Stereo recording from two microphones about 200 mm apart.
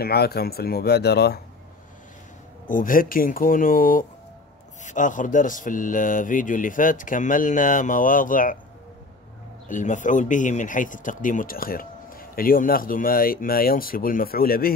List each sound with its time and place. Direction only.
0.0 s speech: 50° left (ahead or behind)
2.7 s speech: 45° left (ahead or behind)
9.7 s speech: 40° left (ahead or behind)